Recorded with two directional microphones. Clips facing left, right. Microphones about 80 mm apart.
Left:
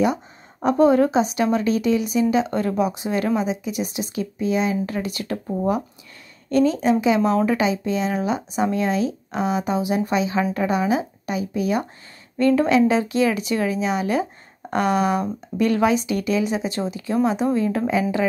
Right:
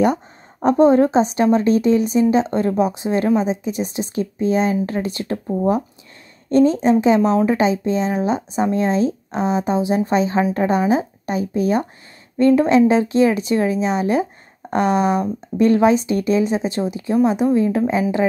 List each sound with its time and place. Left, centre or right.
0.7 s speech: right
6.5 s speech: right
12.4 s speech: right